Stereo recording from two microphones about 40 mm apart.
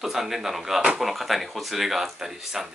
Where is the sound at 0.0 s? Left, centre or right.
Centre.